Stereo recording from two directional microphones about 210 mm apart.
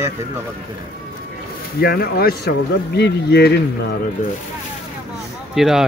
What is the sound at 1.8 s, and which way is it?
Speech, 50° left (ahead or behind).